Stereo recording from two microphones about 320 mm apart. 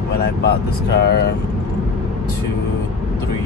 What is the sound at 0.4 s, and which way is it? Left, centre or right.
Speech, left.